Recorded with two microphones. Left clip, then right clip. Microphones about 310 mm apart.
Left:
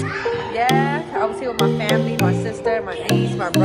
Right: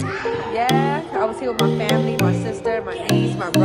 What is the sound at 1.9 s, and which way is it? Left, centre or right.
Speech, centre.